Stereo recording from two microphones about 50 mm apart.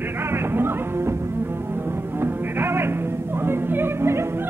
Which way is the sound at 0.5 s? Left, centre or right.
Right.